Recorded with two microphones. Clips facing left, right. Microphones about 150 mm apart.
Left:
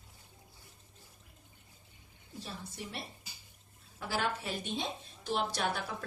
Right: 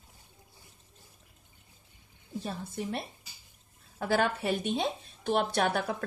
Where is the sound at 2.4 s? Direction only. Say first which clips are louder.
Right 8 dB; 50° right (ahead or behind).